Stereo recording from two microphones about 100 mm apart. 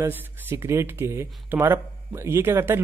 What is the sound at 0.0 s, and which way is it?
Speech, 20° right (ahead or behind).